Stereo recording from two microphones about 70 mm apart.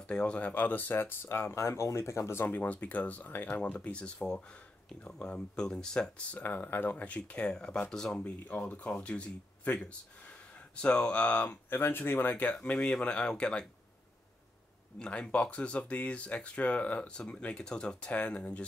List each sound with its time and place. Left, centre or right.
0.0 s speech: centre
6.4 s speech: left; by 8.2 s centre
8.2 s speech: left
15.0 s speech: centre